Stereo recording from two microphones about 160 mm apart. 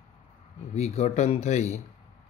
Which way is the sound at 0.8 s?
40° left (ahead or behind).